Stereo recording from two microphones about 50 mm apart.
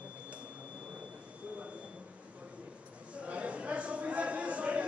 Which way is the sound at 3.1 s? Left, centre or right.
Right.